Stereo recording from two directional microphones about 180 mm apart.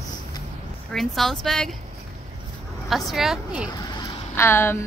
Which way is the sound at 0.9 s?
Centre (ahead or behind).